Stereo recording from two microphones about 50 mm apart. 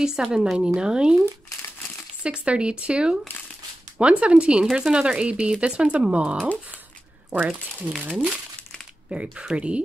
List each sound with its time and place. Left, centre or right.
0.0 s a woman's voice: centre
2.2 s speech: right
7.3 s speech: right
9.1 s speech: right